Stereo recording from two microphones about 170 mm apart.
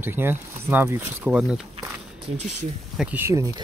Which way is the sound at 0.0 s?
15° right (ahead or behind).